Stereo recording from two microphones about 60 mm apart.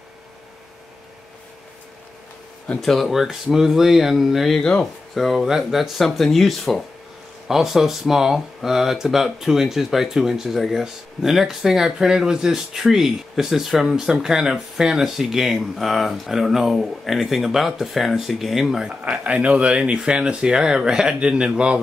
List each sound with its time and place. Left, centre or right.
2.8 s speech: centre
4.6 s speech: centre
5.1 s speech: centre
19.0 s speech: centre